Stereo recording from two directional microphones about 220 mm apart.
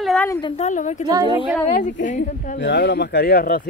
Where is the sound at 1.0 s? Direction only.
20° right (ahead or behind).